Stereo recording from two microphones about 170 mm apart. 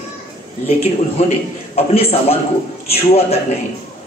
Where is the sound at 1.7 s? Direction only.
35° left (ahead or behind).